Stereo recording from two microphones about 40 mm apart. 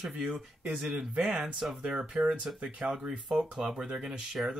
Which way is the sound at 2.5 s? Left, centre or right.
Right.